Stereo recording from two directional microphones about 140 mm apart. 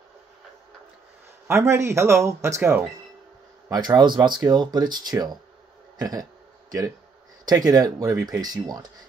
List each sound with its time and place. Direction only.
1.5 s speech: 20° right (ahead or behind)
5.9 s a sound: 25° right (ahead or behind)
7.4 s speech: 25° right (ahead or behind)